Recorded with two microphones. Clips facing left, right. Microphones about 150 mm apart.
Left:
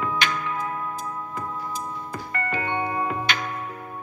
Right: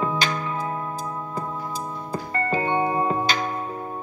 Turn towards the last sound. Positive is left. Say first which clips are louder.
# right 4 dB
turn(degrees=-30)  # may be behind; listen again after turning